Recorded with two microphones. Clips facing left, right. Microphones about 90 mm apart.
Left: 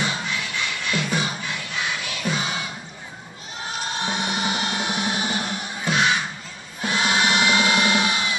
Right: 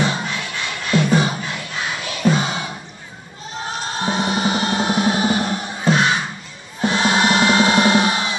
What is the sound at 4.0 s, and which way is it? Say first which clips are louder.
Music: right 7 dB; 40° right (ahead or behind).